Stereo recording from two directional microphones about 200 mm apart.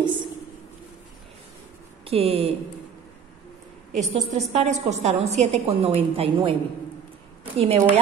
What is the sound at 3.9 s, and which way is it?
A woman's voice, 35° right (ahead or behind).